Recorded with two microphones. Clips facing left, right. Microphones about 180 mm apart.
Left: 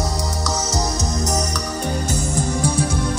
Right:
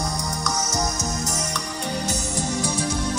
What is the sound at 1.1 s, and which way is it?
Music, 35° left (ahead or behind).